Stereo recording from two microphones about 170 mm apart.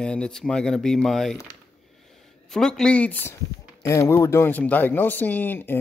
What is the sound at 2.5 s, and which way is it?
Speech, centre (ahead or behind).